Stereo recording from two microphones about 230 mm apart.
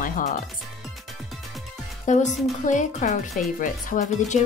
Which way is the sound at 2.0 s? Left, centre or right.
Left.